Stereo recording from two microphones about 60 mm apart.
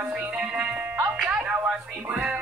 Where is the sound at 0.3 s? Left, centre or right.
Right.